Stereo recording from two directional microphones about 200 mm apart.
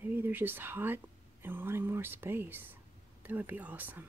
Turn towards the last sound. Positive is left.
turn(degrees=-10)  # may be behind; listen again after turning